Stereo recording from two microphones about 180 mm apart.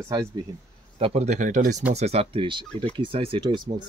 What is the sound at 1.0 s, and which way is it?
Speech, 35° right (ahead or behind).